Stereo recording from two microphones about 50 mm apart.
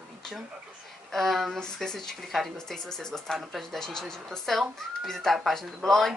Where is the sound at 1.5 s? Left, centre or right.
Centre.